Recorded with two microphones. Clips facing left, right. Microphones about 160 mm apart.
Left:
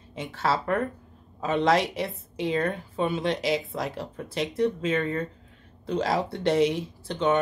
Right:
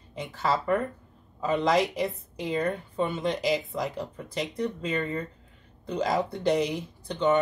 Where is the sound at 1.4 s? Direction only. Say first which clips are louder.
Left 2 dB; 90° left.